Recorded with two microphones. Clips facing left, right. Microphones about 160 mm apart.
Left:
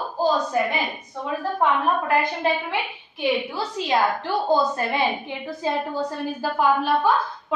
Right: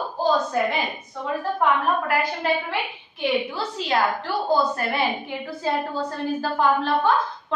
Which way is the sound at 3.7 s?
15° left (ahead or behind).